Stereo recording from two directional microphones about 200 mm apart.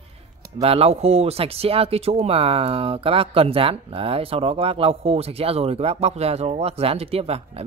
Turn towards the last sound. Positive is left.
turn(degrees=-30)  # may be behind; listen again after turning